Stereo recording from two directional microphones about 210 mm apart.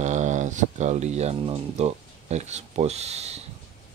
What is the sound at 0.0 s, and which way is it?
Speech, 35° right (ahead or behind).